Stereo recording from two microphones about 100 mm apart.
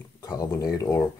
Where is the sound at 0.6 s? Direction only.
25° left (ahead or behind).